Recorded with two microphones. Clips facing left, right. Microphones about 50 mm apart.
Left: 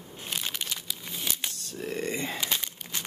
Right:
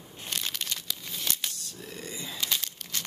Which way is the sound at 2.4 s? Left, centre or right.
Centre.